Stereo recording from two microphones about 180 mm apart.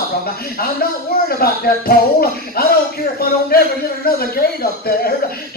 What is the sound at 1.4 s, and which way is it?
Speech, 55° left (ahead or behind).